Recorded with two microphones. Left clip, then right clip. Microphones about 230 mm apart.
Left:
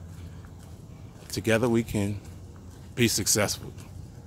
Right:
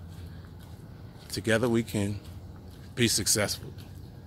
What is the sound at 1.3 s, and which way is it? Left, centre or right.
Speech, centre.